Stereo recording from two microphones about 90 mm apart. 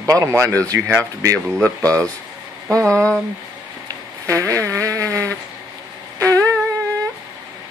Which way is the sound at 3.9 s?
35° right (ahead or behind).